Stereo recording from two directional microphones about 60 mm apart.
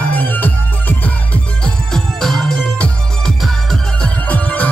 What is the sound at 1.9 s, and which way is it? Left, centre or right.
Music, centre.